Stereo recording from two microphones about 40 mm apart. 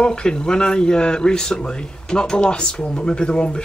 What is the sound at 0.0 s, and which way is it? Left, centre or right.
Speech, left.